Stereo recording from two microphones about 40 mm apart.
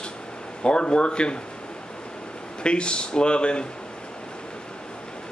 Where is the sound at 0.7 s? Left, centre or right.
Left.